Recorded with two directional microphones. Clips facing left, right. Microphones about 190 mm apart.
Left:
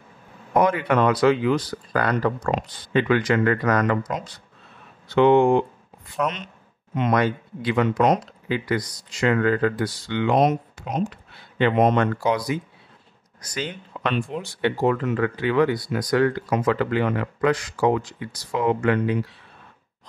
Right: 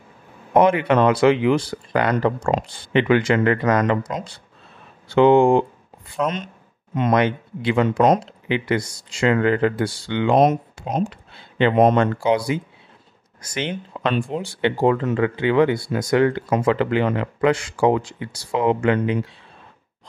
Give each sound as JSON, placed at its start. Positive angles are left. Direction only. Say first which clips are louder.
{"t": 0.5, "sound": "speech", "louder": "right 4 dB", "side_deg": -25}
{"t": 11.1, "sound": "a sound", "louder": "right 1 dB", "side_deg": -25}
{"t": 11.7, "sound": "speech", "louder": "right 4 dB", "side_deg": -45}
{"t": 12.0, "sound": "speech", "louder": "right 3 dB", "side_deg": -25}